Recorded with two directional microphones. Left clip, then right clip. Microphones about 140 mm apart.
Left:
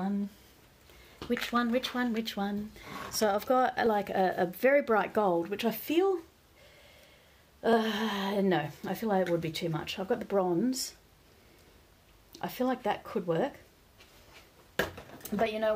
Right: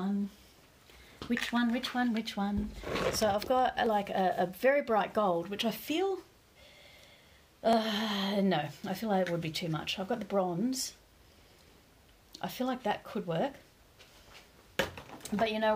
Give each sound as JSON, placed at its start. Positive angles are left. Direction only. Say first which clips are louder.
{"t": 1.3, "sound": "speech", "louder": "left 3 dB", "side_deg": 45}
{"t": 7.6, "sound": "speech", "louder": "left 1 dB", "side_deg": 50}
{"t": 12.3, "sound": "speech", "louder": "left 3 dB", "side_deg": 55}
{"t": 15.2, "sound": "speech", "louder": "left 1 dB", "side_deg": 50}